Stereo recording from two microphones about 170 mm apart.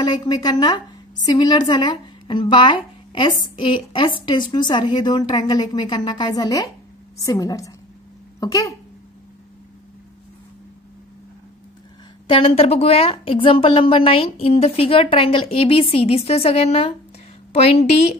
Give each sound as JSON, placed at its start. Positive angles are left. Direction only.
{"t": 0.0, "sound": "a woman's voice", "side_deg": 25}
{"t": 12.3, "sound": "a woman's voice", "side_deg": 30}